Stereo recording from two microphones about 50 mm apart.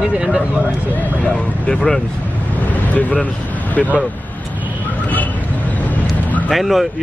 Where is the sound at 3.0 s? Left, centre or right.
Left.